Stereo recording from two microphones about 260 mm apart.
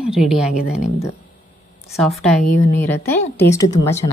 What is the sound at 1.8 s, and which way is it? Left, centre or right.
A woman's voice, centre.